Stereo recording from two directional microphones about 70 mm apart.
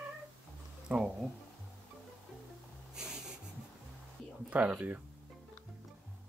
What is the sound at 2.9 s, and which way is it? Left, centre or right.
Writing, centre.